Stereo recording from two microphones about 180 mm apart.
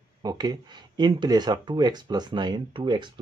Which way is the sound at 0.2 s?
20° right (ahead or behind).